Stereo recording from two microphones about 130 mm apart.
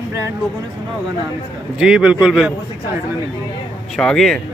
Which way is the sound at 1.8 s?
5° right (ahead or behind).